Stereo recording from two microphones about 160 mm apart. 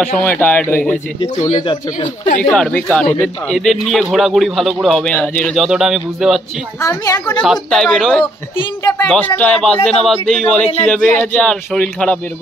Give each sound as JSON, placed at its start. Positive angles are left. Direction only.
{"t": 0.2, "sound": "speech", "side_deg": 10}
{"t": 1.6, "sound": "a woman's voice", "side_deg": 30}
{"t": 2.5, "sound": "a man's voice", "side_deg": 5}
{"t": 6.8, "sound": "a woman's voice", "side_deg": 20}
{"t": 7.4, "sound": "a man's voice", "side_deg": 5}
{"t": 8.5, "sound": "a woman's voice", "side_deg": 20}
{"t": 9.0, "sound": "a man's voice", "side_deg": 10}